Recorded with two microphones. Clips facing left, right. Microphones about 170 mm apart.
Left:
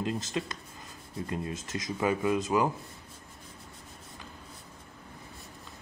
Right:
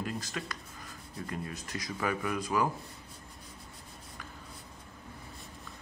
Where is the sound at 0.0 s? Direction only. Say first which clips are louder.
Left 5 dB; 25° left (ahead or behind).